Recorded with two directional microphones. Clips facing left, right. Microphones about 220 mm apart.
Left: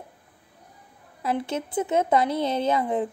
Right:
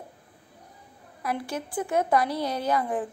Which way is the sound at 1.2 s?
25° left (ahead or behind).